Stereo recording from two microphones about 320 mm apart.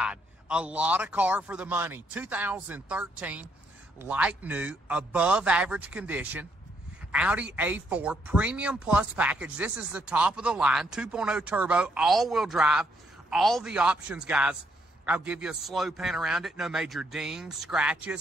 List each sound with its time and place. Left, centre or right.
0.0 s speech: centre